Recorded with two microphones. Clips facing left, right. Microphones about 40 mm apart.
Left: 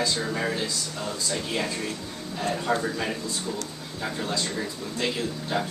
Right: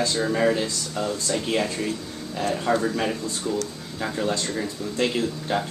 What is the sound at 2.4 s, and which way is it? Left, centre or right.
Speech, centre.